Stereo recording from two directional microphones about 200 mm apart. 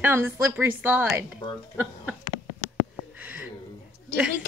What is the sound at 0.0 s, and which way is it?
A woman's voice, 10° right (ahead or behind).